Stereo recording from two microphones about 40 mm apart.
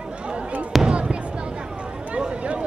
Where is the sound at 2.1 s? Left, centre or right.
Right.